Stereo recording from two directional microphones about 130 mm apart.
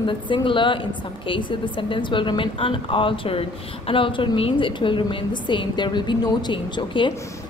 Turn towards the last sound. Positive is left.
turn(degrees=40)  # may be behind; listen again after turning